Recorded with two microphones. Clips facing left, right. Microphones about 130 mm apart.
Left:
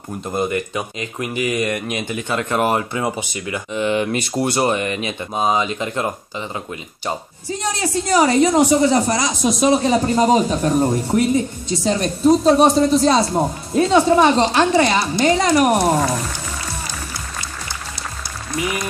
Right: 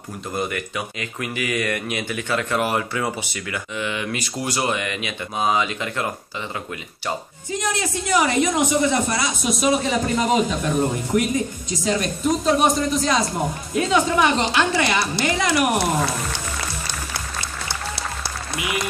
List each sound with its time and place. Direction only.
0.3 s speech: 25° left (ahead or behind)
7.4 s a woman's voice: 35° left (ahead or behind)